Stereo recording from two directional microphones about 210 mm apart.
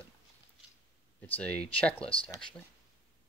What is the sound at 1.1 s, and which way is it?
Speech, 5° left (ahead or behind).